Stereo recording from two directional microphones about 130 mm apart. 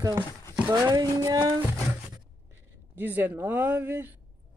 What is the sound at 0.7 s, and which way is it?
Speech, 30° right (ahead or behind).